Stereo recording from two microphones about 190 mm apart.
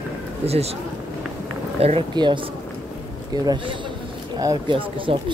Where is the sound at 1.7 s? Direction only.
30° right (ahead or behind).